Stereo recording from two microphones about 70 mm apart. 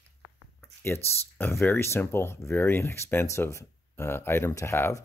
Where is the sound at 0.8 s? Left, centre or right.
Left.